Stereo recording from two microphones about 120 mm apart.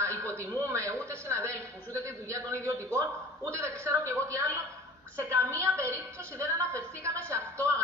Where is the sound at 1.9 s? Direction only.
25° right (ahead or behind).